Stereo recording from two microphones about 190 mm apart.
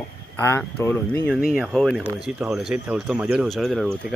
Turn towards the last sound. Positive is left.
turn(degrees=0)  # may be behind; listen again after turning